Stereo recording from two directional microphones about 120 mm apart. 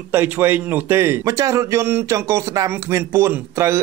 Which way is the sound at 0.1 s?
15° right (ahead or behind).